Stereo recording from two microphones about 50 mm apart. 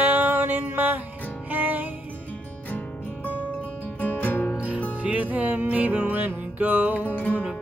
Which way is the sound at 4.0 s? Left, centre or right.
Left.